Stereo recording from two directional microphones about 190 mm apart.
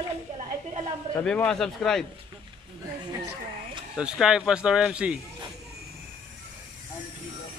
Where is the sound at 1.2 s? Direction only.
5° left (ahead or behind).